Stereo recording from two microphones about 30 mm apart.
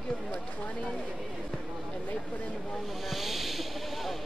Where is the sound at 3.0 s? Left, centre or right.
Centre.